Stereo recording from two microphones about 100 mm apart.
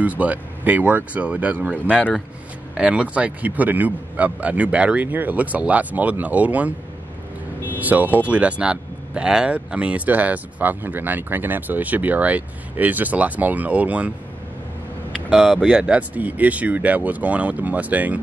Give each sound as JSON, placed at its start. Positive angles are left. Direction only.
{"t": 0.0, "sound": "speech", "side_deg": -15}
{"t": 7.8, "sound": "speech", "side_deg": -15}
{"t": 15.3, "sound": "speech", "side_deg": 0}
{"t": 15.6, "sound": "speech", "side_deg": -15}